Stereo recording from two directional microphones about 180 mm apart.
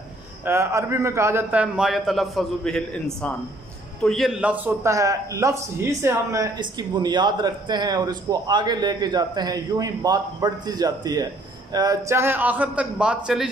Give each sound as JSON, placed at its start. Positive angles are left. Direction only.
{"t": 0.5, "sound": "a man's voice", "side_deg": -15}